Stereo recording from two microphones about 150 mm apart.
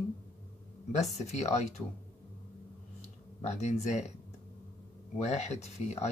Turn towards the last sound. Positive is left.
turn(degrees=50)  # may be behind; listen again after turning